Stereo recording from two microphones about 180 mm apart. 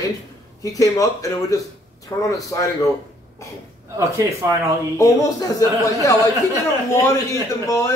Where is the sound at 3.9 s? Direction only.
15° right (ahead or behind).